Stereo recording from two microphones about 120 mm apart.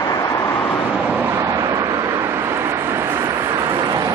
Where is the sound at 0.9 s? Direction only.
15° right (ahead or behind).